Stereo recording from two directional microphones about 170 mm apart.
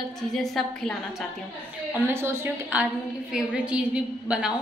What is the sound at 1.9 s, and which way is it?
A woman's voice, 15° right (ahead or behind).